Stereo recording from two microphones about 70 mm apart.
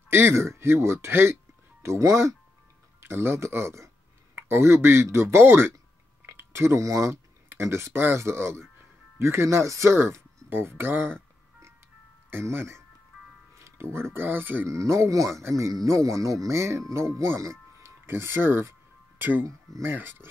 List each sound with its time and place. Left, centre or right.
0.1 s speech: right
3.0 s speech: right
6.2 s a sound: right
6.8 s speech: right
12.3 s speech: right
14.7 s speech: right
19.1 s music: right
19.8 s speech: right